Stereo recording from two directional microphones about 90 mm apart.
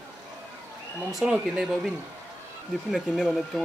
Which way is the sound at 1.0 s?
5° right (ahead or behind).